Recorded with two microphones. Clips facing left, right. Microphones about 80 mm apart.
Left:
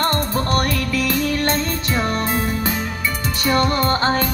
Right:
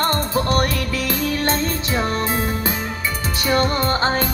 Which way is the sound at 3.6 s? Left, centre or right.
Right.